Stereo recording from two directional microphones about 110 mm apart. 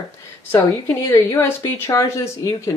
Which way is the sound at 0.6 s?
30° left (ahead or behind).